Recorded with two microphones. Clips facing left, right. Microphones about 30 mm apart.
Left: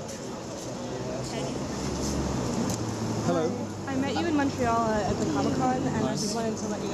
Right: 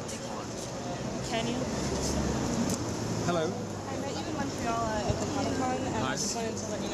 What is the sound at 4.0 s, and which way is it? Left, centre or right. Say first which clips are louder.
Speech: left 10 dB; left.